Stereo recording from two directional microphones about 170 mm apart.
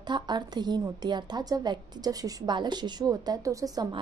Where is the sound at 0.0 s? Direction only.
25° right (ahead or behind).